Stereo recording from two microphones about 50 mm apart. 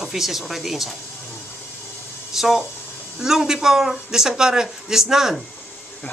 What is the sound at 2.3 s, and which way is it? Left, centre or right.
Speech, centre.